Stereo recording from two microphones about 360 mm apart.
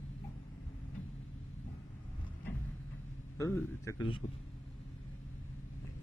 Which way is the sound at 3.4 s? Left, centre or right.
Centre.